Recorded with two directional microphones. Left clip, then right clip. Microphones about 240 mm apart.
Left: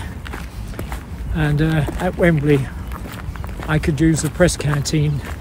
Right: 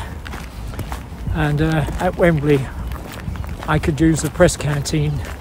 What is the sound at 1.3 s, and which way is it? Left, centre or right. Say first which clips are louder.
Speech: right 1 dB; centre.